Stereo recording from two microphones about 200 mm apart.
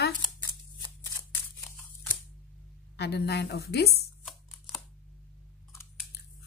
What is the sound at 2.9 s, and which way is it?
A woman's voice, 55° left (ahead or behind).